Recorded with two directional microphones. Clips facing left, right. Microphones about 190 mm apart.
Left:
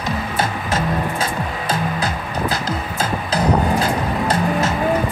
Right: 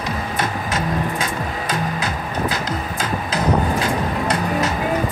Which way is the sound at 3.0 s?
35° left (ahead or behind).